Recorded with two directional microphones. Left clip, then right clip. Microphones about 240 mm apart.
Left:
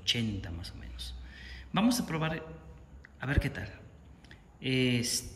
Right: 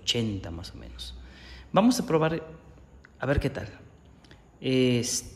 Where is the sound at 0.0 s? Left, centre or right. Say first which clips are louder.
Right 3 dB; centre.